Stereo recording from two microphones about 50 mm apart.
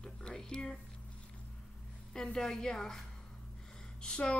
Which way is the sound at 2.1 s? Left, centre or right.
Centre.